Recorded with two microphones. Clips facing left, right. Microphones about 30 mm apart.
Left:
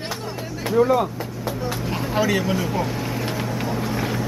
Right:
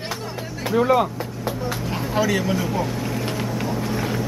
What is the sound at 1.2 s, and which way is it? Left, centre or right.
Vehicle, centre.